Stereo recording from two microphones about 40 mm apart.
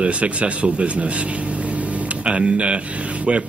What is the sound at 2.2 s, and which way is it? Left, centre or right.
Speech, right.